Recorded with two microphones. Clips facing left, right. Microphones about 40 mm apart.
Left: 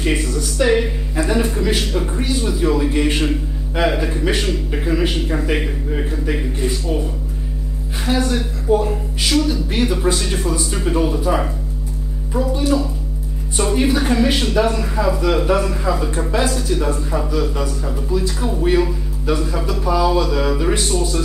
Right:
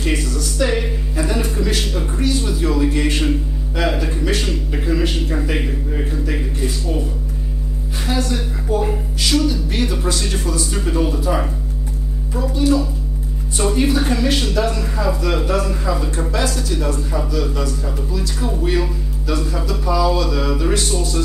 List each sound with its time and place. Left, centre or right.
0.0 s a man's voice: centre
2.4 s a man's voice: centre
12.5 s a man's voice: centre
16.2 s a man's voice: left